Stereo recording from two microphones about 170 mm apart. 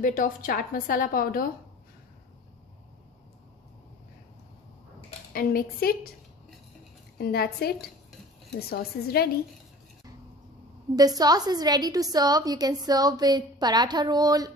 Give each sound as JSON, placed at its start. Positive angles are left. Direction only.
{"t": 0.0, "sound": "a woman's voice", "side_deg": 50}
{"t": 5.3, "sound": "a woman's voice", "side_deg": 60}
{"t": 7.2, "sound": "a woman's voice", "side_deg": 65}
{"t": 11.0, "sound": "a woman's voice", "side_deg": -20}